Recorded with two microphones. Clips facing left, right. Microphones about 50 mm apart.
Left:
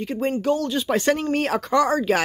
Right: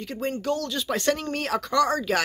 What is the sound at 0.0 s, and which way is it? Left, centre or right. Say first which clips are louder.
Speech: left 5 dB; centre.